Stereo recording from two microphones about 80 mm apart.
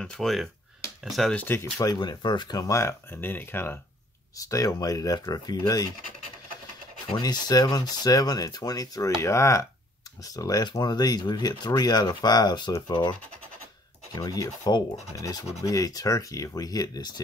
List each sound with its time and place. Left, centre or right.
0.0 s speech: centre
1.3 s speech: left
1.8 s speech: left
2.6 s speech: left
4.4 s speech: left
7.1 s speech: left
10.7 s speech: left
14.1 s speech: left